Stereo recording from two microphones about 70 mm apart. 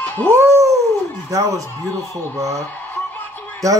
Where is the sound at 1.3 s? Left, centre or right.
Right.